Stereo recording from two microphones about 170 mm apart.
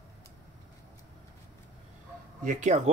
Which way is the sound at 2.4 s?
45° right (ahead or behind).